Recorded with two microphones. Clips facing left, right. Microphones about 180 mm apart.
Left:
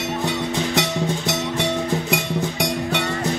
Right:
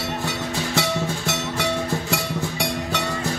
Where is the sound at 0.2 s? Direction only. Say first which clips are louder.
Left 4 dB; 20° left (ahead or behind).